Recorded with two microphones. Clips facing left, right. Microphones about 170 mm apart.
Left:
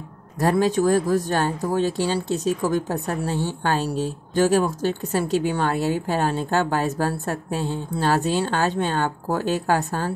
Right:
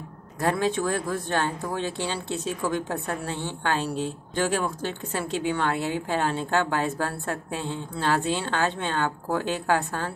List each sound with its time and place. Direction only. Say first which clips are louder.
0.4 s speech: left 5 dB; 40° left (ahead or behind)